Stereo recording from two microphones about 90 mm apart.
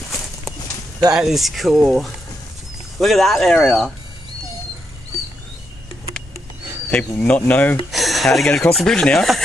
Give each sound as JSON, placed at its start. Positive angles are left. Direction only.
{"t": 1.1, "sound": "speech", "side_deg": -5}
{"t": 6.9, "sound": "speech", "side_deg": 15}
{"t": 7.9, "sound": "speech", "side_deg": 0}